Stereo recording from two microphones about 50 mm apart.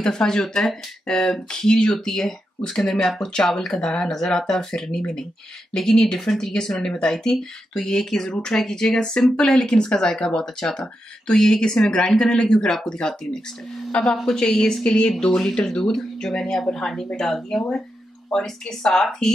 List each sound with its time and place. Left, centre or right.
0.0 s speech: centre